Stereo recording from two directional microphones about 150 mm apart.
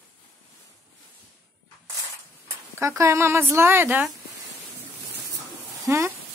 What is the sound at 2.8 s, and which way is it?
Speech, 20° right (ahead or behind).